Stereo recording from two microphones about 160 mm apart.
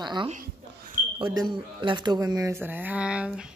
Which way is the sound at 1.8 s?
30° right (ahead or behind).